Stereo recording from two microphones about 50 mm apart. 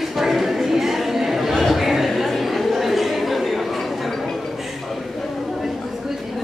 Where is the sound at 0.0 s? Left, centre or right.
Centre.